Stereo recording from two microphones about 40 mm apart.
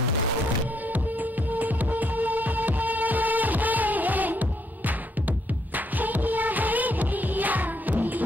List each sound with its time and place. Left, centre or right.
1.5 s music: right
5.9 s music: right